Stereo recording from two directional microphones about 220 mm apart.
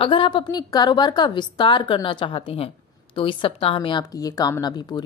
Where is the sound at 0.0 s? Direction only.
25° left (ahead or behind).